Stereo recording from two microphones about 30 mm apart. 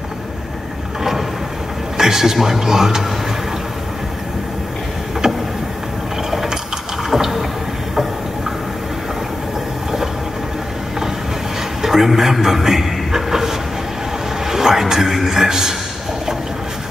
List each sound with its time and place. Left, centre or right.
2.0 s a man's voice: centre
5.2 s vehicle: centre
6.3 s ratchet: centre
7.2 s a sound: centre
11.8 s a sound: centre
14.4 s a man's voice: centre